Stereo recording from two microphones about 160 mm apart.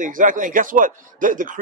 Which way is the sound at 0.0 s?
55° right (ahead or behind).